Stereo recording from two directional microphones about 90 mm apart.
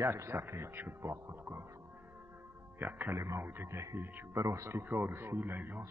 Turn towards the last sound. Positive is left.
turn(degrees=-20)  # may be behind; listen again after turning